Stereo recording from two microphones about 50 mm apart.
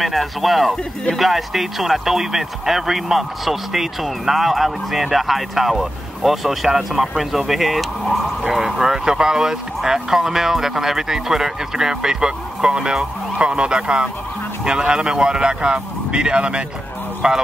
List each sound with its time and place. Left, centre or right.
0.0 s speech: centre